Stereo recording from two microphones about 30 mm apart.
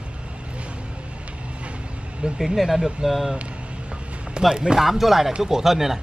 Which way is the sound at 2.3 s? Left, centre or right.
Centre.